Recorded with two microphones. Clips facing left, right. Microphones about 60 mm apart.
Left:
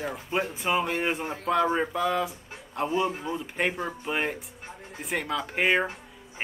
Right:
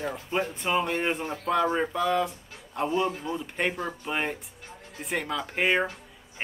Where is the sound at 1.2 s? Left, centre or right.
Centre.